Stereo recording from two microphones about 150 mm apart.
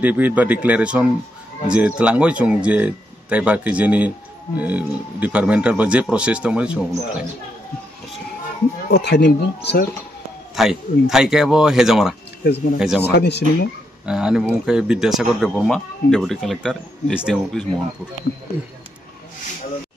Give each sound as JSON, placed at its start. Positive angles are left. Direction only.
{"t": 0.0, "sound": "speech", "side_deg": -10}
{"t": 8.8, "sound": "speech", "side_deg": 90}
{"t": 10.5, "sound": "speech", "side_deg": -5}
{"t": 13.1, "sound": "speech", "side_deg": 90}
{"t": 14.0, "sound": "speech", "side_deg": -5}